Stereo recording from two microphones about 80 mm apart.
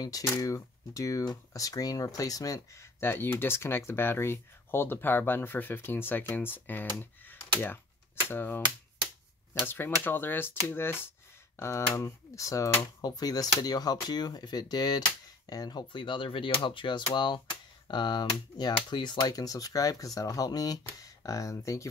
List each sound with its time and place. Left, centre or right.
0.0 s speech: left
11.9 s speech: left
13.0 s speech: left
15.9 s speech: left
19.2 s speech: left